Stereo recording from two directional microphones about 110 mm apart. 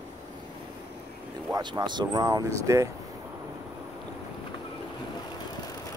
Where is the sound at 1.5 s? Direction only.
40° right (ahead or behind).